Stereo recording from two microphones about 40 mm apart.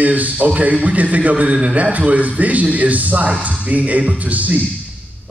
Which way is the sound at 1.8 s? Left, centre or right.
Right.